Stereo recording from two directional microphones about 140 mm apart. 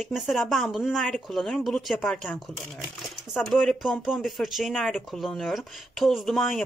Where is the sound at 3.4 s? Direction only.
Centre (ahead or behind).